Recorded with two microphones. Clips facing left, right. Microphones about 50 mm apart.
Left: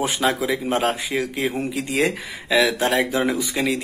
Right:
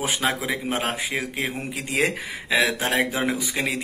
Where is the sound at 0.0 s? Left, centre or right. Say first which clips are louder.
Left 3 dB; right.